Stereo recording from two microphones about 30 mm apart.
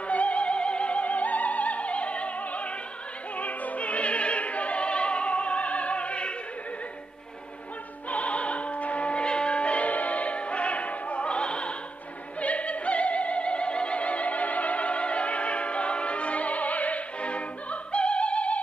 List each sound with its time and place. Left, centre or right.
0.1 s opera: left
3.3 s opera: left
8.1 s music: left
9.2 s music: left
11.2 s opera: left
12.4 s opera: left
17.2 s music: left